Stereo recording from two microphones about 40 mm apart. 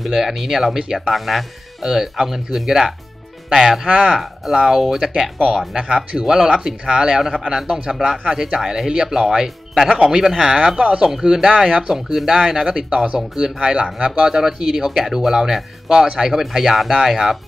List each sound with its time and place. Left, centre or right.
0.1 s speech: centre
3.8 s speech: right
4.1 s speech: centre
5.8 s speech: right
11.1 s speech: centre
11.9 s speech: centre; by 14.3 s right
14.3 s speech: centre